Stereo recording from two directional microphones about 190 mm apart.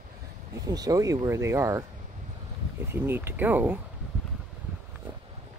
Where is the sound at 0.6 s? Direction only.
20° right (ahead or behind).